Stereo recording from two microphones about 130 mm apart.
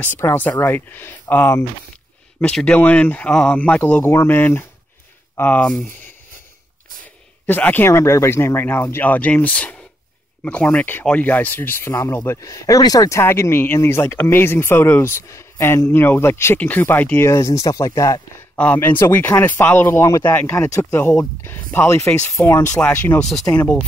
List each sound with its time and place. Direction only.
0.0 s speech: 15° left (ahead or behind)
7.4 s speech: 15° left (ahead or behind)
18.6 s speech: 10° left (ahead or behind)